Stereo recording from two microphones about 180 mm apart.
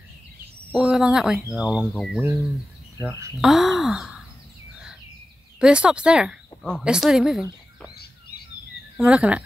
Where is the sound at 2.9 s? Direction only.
20° right (ahead or behind).